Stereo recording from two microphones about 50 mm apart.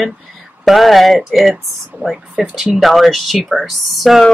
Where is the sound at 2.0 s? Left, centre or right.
Right.